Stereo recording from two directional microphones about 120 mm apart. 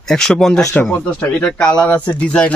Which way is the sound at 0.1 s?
5° left (ahead or behind).